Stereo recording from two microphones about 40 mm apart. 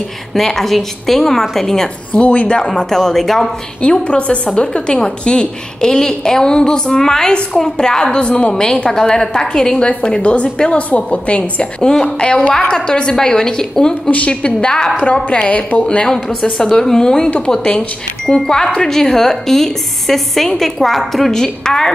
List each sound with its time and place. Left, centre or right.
0.3 s a woman's voice: centre
2.1 s a woman's voice: left
2.7 s a woman's voice: centre
3.8 s a woman's voice: left
11.1 s a woman's voice: left
12.2 s a woman's voice: left
15.4 s a woman's voice: left
16.5 s a woman's voice: centre